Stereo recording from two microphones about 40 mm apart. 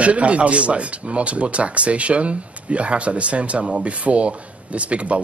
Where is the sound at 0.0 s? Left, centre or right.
Right.